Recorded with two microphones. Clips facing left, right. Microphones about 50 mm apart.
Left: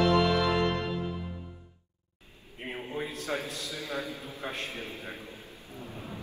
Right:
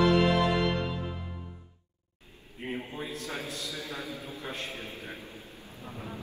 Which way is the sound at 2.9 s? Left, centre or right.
Left.